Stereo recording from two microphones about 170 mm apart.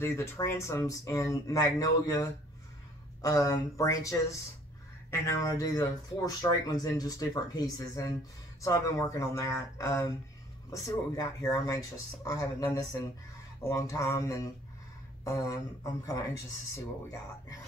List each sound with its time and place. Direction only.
0.0 s speech: 15° left (ahead or behind)
11.2 s speech: 20° left (ahead or behind)